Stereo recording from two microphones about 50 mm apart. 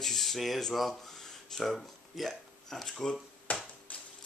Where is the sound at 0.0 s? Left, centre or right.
Centre.